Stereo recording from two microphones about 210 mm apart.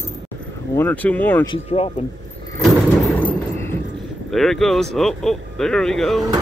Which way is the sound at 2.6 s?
Centre (ahead or behind).